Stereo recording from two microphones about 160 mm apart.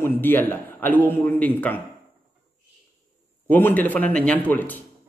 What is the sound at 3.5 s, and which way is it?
A man's voice, 10° left (ahead or behind).